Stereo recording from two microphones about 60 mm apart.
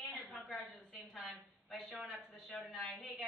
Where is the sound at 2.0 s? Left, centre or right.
Centre.